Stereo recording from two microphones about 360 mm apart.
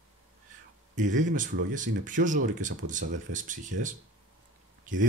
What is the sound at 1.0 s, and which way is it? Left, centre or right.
Speech, right.